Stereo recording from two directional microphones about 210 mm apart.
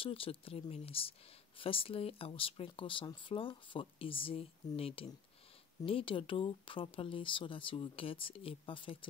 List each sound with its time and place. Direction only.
0.0 s speech: 25° left (ahead or behind)